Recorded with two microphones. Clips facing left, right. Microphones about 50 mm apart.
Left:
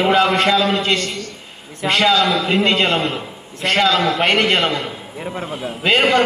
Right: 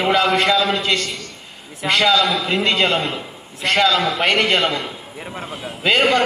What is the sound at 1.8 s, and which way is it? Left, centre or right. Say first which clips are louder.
Speech: left 1 dB; centre.